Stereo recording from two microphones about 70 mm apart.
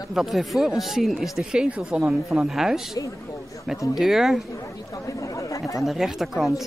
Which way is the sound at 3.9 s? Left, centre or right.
Centre.